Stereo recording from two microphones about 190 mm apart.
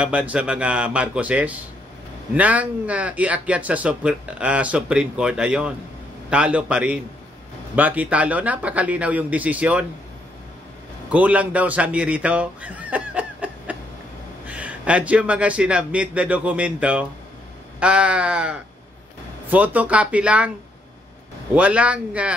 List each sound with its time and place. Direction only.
0.0 s speech: 5° right (ahead or behind)
11.1 s speech: 5° right (ahead or behind)
17.7 s a sound: 5° right (ahead or behind)
19.5 s speech: 10° right (ahead or behind)
21.5 s speech: 5° right (ahead or behind)